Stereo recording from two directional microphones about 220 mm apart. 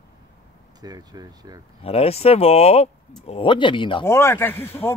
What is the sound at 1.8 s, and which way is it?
Speech, 25° left (ahead or behind).